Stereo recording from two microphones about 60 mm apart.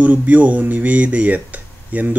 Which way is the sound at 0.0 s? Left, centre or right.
Right.